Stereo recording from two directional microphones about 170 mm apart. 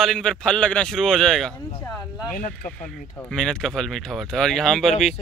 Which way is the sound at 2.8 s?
5° left (ahead or behind).